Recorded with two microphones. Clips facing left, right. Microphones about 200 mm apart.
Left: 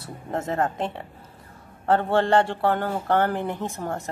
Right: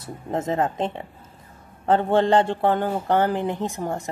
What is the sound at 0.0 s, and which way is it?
A woman's voice, 15° right (ahead or behind).